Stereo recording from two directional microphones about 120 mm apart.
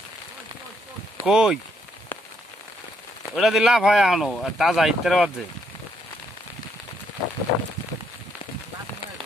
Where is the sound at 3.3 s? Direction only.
Centre (ahead or behind).